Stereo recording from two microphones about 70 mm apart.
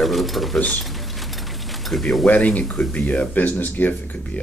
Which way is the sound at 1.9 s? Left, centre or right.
Centre.